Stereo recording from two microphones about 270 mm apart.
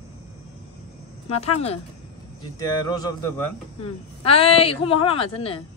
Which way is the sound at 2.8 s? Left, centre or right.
Centre.